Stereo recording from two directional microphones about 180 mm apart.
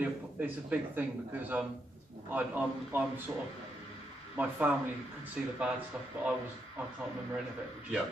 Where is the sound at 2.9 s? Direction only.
10° right (ahead or behind).